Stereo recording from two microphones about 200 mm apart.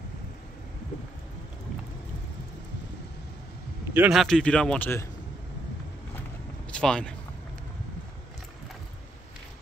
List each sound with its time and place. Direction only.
3.9 s a man's voice: 5° right (ahead or behind)
6.7 s speech: 5° left (ahead or behind)